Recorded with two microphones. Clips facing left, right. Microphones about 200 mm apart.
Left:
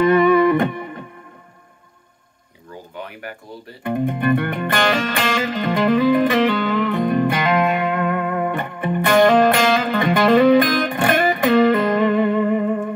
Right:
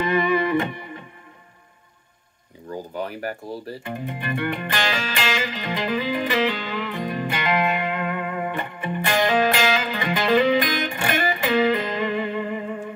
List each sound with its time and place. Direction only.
0.0 s music: 50° left (ahead or behind)
3.0 s speech: 35° right (ahead or behind)
3.8 s music: 50° left (ahead or behind)